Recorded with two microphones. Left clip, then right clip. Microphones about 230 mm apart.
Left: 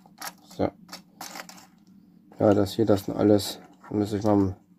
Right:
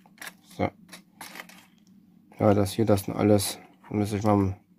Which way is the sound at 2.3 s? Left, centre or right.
Right.